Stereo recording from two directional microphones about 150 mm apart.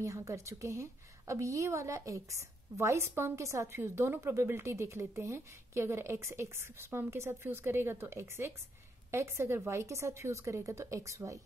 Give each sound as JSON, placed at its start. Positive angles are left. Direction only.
{"t": 0.0, "sound": "a woman's voice", "side_deg": -20}